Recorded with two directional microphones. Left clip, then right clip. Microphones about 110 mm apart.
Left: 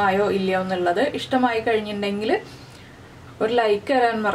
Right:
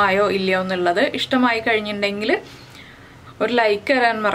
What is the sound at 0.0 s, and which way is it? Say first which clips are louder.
Speech: right 3 dB; 30° right (ahead or behind).